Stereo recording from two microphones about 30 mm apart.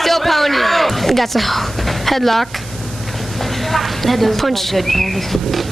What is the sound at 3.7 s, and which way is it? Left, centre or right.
A child's voice, centre.